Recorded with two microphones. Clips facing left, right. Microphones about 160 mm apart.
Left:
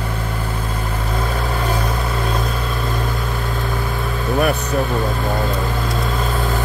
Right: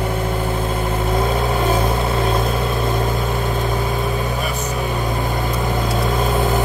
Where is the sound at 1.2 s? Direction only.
20° right (ahead or behind).